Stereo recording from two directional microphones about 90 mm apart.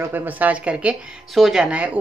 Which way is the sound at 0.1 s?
20° right (ahead or behind).